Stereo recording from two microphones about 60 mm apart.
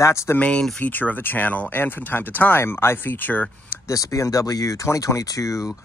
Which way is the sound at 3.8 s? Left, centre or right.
Left.